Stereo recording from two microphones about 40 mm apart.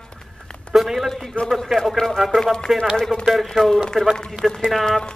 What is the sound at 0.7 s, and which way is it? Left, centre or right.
Speech, centre.